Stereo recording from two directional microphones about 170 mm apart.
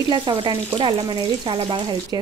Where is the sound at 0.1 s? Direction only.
30° right (ahead or behind).